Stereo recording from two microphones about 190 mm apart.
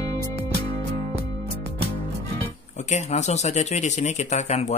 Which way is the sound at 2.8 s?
35° left (ahead or behind).